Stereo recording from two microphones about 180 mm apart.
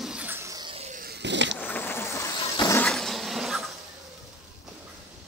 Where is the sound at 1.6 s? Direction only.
10° left (ahead or behind).